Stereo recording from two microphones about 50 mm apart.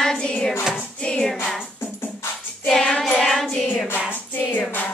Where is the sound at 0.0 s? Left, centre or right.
Centre.